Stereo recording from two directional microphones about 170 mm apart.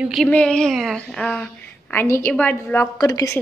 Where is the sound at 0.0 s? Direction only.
Centre (ahead or behind).